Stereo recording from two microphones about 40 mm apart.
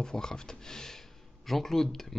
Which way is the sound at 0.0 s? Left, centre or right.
Centre.